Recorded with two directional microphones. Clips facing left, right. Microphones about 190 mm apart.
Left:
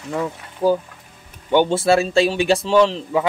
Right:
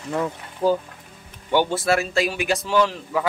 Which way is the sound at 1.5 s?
20° left (ahead or behind).